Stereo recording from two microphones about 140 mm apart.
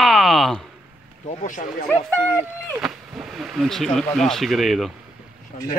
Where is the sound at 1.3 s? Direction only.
60° left (ahead or behind).